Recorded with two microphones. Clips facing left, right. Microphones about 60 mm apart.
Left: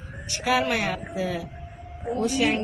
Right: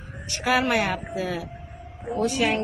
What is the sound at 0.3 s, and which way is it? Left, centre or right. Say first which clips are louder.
Speech: right 1 dB; right.